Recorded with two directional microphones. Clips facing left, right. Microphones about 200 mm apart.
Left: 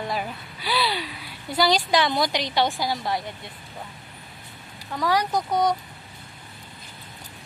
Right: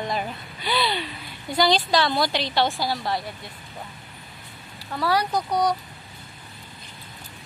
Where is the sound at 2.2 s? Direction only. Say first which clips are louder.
Even; 15° left (ahead or behind).